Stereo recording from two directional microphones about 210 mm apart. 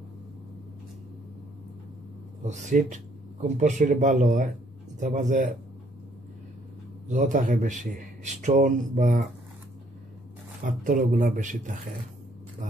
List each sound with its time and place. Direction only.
2.4 s speech: 35° right (ahead or behind)
7.1 s speech: 35° right (ahead or behind)
10.6 s speech: 40° right (ahead or behind)